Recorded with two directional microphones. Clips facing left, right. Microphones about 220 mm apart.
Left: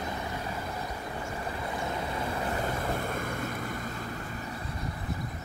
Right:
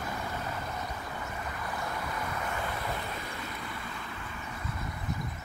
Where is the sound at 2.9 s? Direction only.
50° left (ahead or behind).